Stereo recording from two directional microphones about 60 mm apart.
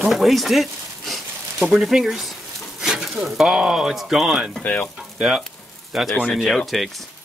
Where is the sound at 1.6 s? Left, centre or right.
Centre.